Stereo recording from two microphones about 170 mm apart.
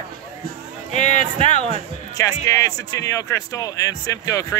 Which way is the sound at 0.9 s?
45° left (ahead or behind).